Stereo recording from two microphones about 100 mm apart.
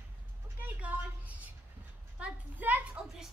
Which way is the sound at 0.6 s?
15° right (ahead or behind).